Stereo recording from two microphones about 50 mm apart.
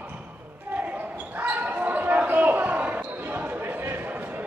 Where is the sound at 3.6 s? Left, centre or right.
Right.